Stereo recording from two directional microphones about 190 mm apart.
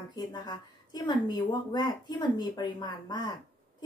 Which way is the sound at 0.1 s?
20° left (ahead or behind).